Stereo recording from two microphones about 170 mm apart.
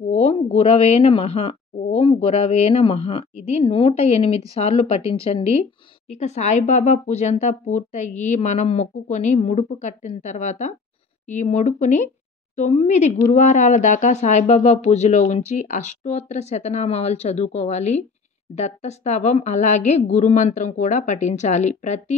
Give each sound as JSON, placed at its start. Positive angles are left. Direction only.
{"t": 0.1, "sound": "a woman's voice", "side_deg": 35}